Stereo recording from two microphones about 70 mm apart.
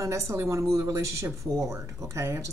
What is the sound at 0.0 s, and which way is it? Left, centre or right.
Speech, right.